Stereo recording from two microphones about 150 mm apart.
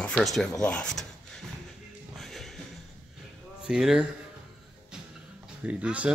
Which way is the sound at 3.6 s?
5° right (ahead or behind).